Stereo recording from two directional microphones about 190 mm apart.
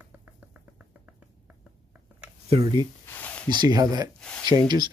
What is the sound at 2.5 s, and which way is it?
Speech, 30° right (ahead or behind).